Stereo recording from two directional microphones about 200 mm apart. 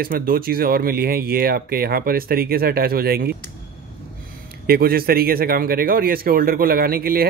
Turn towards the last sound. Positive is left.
turn(degrees=-50)  # may be behind; listen again after turning